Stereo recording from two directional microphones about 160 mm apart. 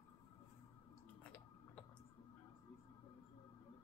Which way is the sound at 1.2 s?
5° left (ahead or behind).